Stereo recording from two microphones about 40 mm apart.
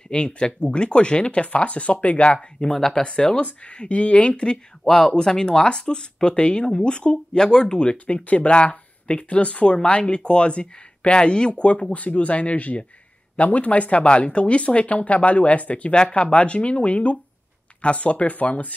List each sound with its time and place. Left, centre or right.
0.1 s speech: left
4.8 s speech: centre; by 18.7 s left